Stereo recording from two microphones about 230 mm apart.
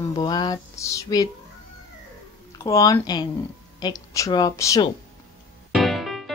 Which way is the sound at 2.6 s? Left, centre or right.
Centre.